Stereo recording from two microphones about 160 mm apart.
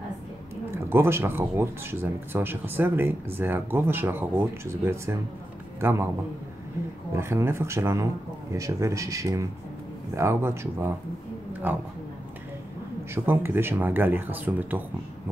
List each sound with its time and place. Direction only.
0.8 s a man's voice: 15° right (ahead or behind)
7.2 s a man's voice: 15° right (ahead or behind)
13.1 s speech: 15° right (ahead or behind)